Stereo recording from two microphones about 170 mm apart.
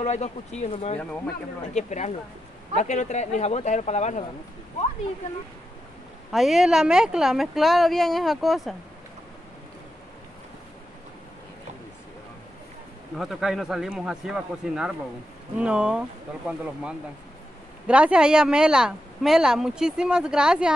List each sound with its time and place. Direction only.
0.0 s speech: 40° left (ahead or behind)
6.3 s speech: centre (ahead or behind)
13.2 s speech: centre (ahead or behind)